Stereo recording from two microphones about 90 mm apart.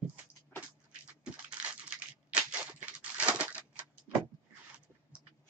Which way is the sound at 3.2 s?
15° right (ahead or behind).